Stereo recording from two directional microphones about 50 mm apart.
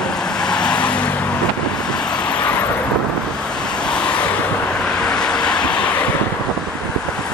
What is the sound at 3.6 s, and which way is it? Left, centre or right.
Vehicle, centre.